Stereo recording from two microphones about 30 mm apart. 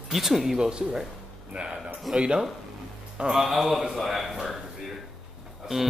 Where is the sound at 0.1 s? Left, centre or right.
Centre.